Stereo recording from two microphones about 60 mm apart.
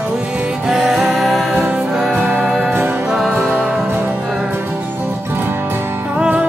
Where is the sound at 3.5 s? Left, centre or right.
Right.